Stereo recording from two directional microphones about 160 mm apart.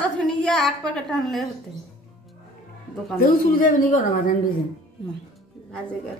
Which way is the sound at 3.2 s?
60° left (ahead or behind).